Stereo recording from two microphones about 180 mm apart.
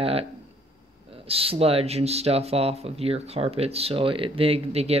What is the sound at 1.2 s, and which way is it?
Speech, 30° right (ahead or behind).